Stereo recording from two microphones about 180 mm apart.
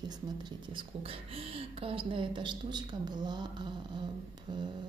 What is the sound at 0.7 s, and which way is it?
Speech, 30° right (ahead or behind).